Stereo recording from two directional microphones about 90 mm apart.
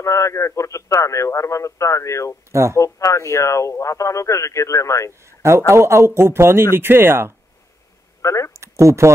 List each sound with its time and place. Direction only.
0.0 s speech: 35° left (ahead or behind)
5.7 s speech: 30° right (ahead or behind)
8.2 s speech: 35° left (ahead or behind)
8.5 s a sound: 35° right (ahead or behind)